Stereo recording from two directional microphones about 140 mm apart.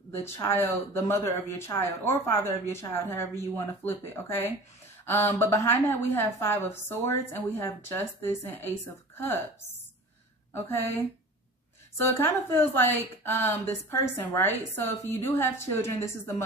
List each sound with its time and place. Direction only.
0.2 s a woman's voice: 15° left (ahead or behind)
10.5 s a woman's voice: 15° left (ahead or behind)
12.4 s a woman's voice: 15° left (ahead or behind)